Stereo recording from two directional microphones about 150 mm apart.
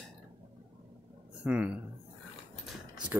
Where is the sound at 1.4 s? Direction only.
10° right (ahead or behind).